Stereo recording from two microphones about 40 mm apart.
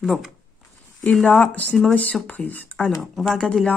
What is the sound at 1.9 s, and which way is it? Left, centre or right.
Speech, left.